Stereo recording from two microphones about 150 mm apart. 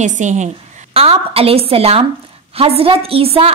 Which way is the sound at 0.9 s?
40° right (ahead or behind).